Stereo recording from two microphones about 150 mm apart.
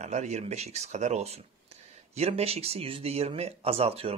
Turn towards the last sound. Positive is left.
turn(degrees=-40)  # may be behind; listen again after turning